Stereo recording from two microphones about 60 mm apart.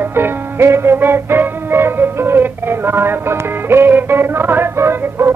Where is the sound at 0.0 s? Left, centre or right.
Right.